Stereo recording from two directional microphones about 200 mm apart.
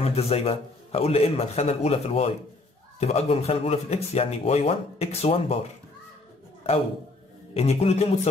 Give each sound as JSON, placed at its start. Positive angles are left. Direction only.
{"t": 0.0, "sound": "speech", "side_deg": 30}
{"t": 7.5, "sound": "speech", "side_deg": 30}